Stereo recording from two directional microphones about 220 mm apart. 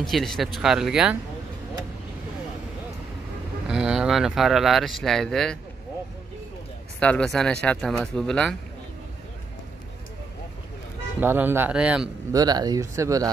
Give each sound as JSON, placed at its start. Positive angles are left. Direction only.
{"t": 0.0, "sound": "speech", "side_deg": 0}
{"t": 3.6, "sound": "speech", "side_deg": -5}
{"t": 7.0, "sound": "speech", "side_deg": 5}
{"t": 11.1, "sound": "speech", "side_deg": -10}
{"t": 12.3, "sound": "speech", "side_deg": -15}